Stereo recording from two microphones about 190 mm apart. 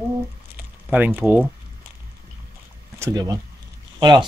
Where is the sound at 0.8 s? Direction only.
10° right (ahead or behind).